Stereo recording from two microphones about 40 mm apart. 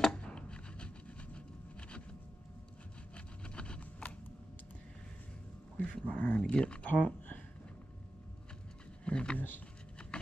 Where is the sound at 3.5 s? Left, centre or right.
Left.